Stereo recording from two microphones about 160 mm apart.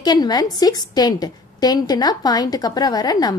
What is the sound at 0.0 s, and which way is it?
A woman's voice, 25° left (ahead or behind).